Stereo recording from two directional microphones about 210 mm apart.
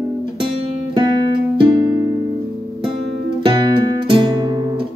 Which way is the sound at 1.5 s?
20° right (ahead or behind).